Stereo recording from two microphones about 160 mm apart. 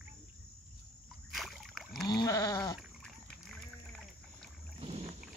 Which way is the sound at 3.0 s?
Centre (ahead or behind).